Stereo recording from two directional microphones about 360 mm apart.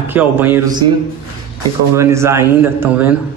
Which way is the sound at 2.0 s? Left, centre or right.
Centre.